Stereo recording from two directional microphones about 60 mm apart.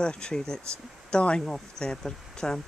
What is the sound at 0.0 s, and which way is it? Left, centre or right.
Speech, centre.